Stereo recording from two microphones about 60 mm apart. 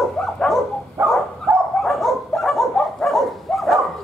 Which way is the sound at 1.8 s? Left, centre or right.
Centre.